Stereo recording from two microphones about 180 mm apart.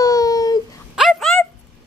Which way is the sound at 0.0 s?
20° left (ahead or behind).